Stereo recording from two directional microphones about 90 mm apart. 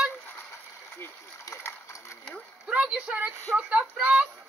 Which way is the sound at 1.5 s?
30° left (ahead or behind).